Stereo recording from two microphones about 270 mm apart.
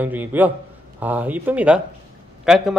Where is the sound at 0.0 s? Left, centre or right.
Centre.